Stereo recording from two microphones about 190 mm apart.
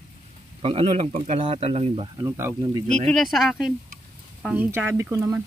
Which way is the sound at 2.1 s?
15° right (ahead or behind).